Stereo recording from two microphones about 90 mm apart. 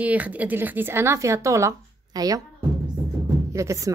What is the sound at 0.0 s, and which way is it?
A woman's voice, 15° right (ahead or behind).